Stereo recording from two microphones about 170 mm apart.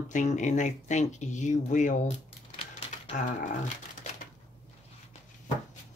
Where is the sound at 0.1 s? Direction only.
45° left (ahead or behind).